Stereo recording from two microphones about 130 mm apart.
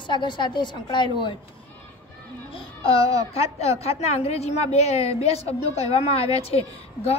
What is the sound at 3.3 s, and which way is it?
A woman's voice, 50° left (ahead or behind).